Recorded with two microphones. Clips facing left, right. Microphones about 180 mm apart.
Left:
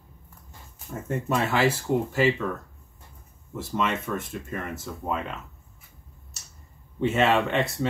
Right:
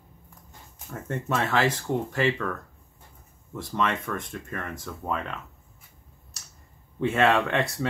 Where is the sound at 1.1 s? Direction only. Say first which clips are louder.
Left 1 dB; 5° left (ahead or behind).